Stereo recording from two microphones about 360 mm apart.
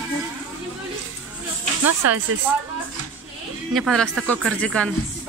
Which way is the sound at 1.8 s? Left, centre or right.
Right.